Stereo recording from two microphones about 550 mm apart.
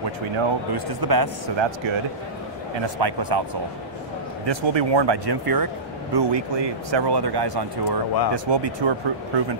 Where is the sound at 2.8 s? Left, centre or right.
Right.